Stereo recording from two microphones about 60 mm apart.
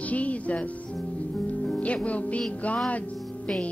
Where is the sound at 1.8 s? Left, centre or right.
Left.